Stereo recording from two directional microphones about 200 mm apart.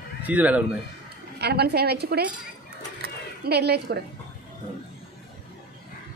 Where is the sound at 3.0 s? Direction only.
55° right (ahead or behind).